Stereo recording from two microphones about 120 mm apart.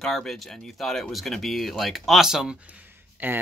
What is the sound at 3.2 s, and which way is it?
Speech, 15° right (ahead or behind).